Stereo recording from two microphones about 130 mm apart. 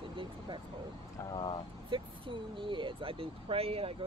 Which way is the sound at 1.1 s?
25° left (ahead or behind).